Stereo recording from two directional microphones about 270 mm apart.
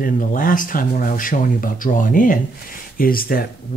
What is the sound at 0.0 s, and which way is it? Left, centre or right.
Speech, left.